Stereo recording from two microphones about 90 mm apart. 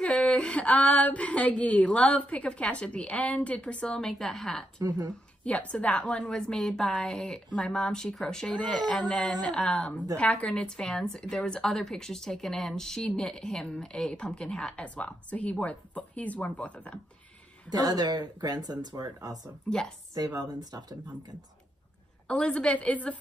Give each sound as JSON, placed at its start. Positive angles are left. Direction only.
{"t": 0.0, "sound": "a woman's voice", "side_deg": 10}
{"t": 5.4, "sound": "a woman's voice", "side_deg": 15}
{"t": 17.6, "sound": "speech", "side_deg": -45}
{"t": 22.3, "sound": "a woman's voice", "side_deg": 10}